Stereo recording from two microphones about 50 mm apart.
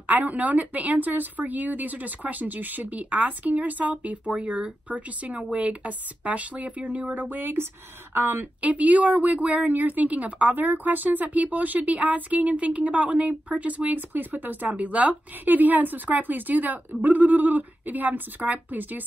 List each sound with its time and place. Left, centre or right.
0.0 s a woman's voice: right
8.5 s a woman's voice: right